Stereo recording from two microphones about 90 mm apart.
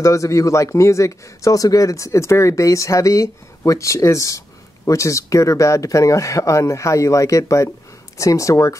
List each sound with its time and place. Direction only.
0.0 s speech: 35° left (ahead or behind)